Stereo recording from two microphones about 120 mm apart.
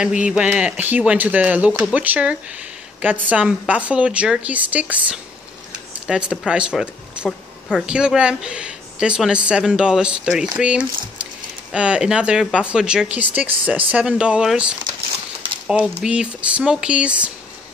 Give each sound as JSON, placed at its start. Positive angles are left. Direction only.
{"t": 0.0, "sound": "speech", "side_deg": -10}